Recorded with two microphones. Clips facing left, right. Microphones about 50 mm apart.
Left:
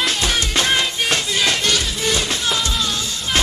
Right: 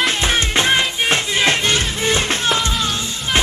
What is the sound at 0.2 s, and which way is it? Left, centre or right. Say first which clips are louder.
Music: right 2 dB; right.